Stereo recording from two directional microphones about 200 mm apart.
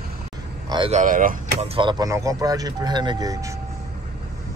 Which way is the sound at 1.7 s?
25° right (ahead or behind).